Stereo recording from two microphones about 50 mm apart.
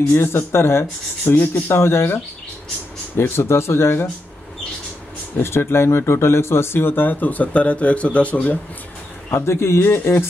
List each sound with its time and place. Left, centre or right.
0.1 s speech: left
1.3 s speech: left
1.7 s speech: left
3.2 s speech: left
5.4 s speech: left
9.3 s speech: left